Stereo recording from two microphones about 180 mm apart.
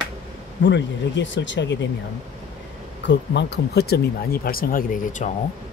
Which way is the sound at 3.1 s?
75° left (ahead or behind).